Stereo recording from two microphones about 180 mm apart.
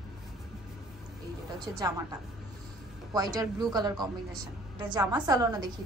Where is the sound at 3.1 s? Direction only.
20° right (ahead or behind).